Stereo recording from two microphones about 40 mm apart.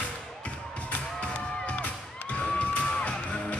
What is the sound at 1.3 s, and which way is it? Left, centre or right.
Music, left.